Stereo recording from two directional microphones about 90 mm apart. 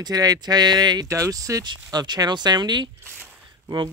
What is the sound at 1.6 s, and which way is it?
Speech, 50° right (ahead or behind).